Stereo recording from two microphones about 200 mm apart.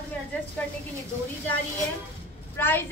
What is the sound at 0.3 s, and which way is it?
Speech, 10° left (ahead or behind).